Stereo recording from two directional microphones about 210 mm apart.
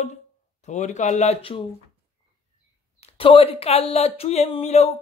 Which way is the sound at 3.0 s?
25° left (ahead or behind).